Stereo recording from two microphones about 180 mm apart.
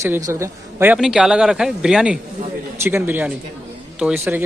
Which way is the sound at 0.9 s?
Centre (ahead or behind).